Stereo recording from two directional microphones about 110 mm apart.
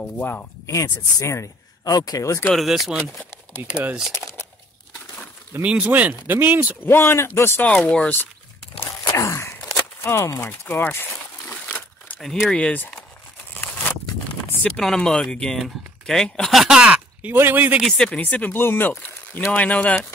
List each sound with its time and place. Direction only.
0.0 s speech: 15° left (ahead or behind)
1.2 s speech: 25° left (ahead or behind)
2.5 s speech: centre (ahead or behind)
5.5 s speech: 10° right (ahead or behind)
6.8 s speech: 20° left (ahead or behind)
9.1 s a sound: 25° left (ahead or behind)
10.0 s speech: 25° left (ahead or behind)
11.7 s a sound: 5° left (ahead or behind)
14.6 s speech: 5° left (ahead or behind); by 17.8 s 15° right (ahead or behind)
17.8 s speech: 10° left (ahead or behind)